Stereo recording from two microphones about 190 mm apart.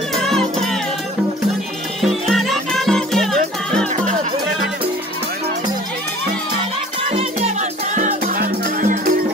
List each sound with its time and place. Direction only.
0.1 s music: centre (ahead or behind)
2.0 s music: centre (ahead or behind)
3.9 s music: 40° right (ahead or behind)
7.1 s music: 35° right (ahead or behind)